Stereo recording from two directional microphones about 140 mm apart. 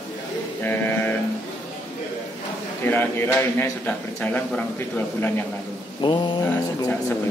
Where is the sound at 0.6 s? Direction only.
15° left (ahead or behind).